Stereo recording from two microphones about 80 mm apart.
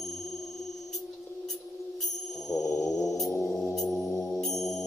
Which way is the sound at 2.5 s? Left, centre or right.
Left.